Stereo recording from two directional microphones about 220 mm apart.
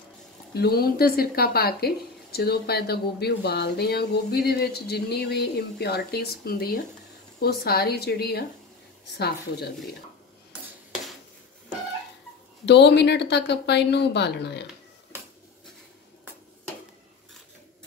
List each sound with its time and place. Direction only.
0.6 s a woman's voice: 45° left (ahead or behind)
12.6 s a woman's voice: 50° left (ahead or behind)